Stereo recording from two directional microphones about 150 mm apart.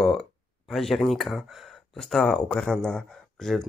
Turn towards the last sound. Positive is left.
turn(degrees=5)  # may be behind; listen again after turning